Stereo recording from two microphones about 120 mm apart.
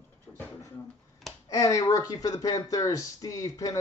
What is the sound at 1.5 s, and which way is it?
Speech, 25° left (ahead or behind).